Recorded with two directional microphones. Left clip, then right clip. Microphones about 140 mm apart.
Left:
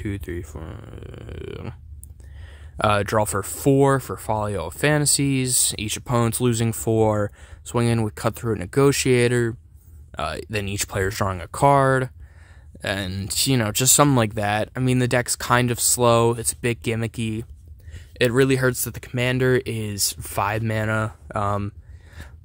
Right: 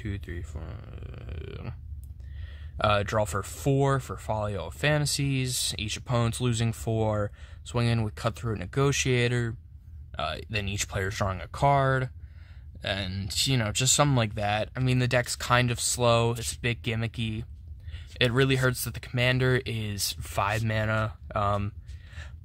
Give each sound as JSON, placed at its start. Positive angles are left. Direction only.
{"t": 0.0, "sound": "speech", "side_deg": 30}